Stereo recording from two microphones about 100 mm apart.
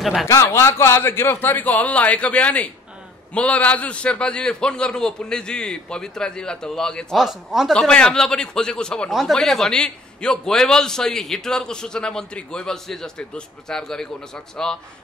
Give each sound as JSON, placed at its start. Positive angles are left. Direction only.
{"t": 0.0, "sound": "speech", "side_deg": 0}
{"t": 0.3, "sound": "a man's voice", "side_deg": 25}
{"t": 7.7, "sound": "a man's voice", "side_deg": 10}